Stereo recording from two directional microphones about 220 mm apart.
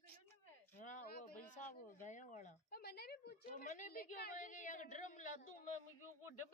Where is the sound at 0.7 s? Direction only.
35° left (ahead or behind).